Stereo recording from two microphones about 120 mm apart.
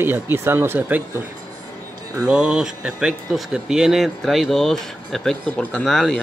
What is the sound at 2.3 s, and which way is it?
Speech, 5° right (ahead or behind).